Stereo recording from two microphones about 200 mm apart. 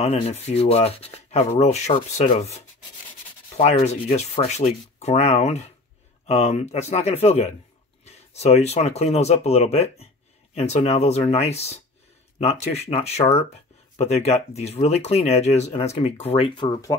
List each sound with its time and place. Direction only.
0.0 s speech: 35° left (ahead or behind)